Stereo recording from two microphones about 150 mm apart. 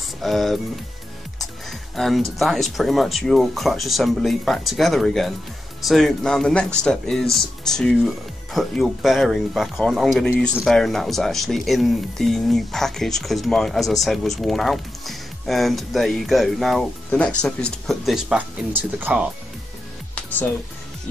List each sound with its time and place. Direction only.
0.2 s speech: centre (ahead or behind)
1.4 s music: centre (ahead or behind)
2.3 s speech: centre (ahead or behind)
20.2 s music: 10° left (ahead or behind)